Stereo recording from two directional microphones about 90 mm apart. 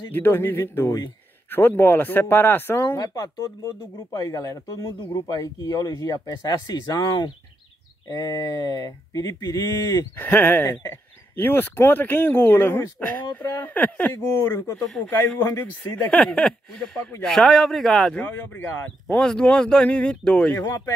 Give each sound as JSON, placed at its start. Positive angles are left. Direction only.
{"t": 0.1, "sound": "speech", "side_deg": 20}
{"t": 4.1, "sound": "speech", "side_deg": 40}
{"t": 9.8, "sound": "speech", "side_deg": 25}
{"t": 13.7, "sound": "speech", "side_deg": 15}
{"t": 14.1, "sound": "speech", "side_deg": 30}
{"t": 18.1, "sound": "speech", "side_deg": 20}
{"t": 19.1, "sound": "speech", "side_deg": 10}